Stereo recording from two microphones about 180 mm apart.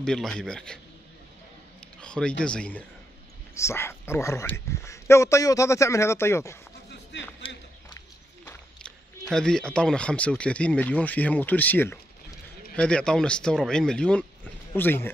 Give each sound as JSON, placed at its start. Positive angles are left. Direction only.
{"t": 0.0, "sound": "speech", "side_deg": 5}
{"t": 2.0, "sound": "speech", "side_deg": 5}
{"t": 7.1, "sound": "a sound", "side_deg": 75}
{"t": 8.5, "sound": "speech", "side_deg": 5}